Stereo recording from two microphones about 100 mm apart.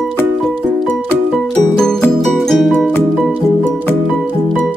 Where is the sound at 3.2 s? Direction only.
10° right (ahead or behind).